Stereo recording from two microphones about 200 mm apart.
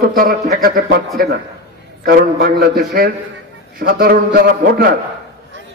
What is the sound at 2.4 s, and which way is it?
A man's voice, 55° right (ahead or behind).